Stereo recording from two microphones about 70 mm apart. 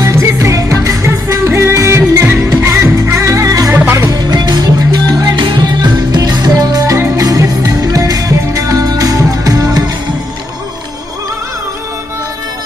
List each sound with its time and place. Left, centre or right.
0.0 s music: right
2.6 s music: right
4.1 s music: right
5.8 s music: right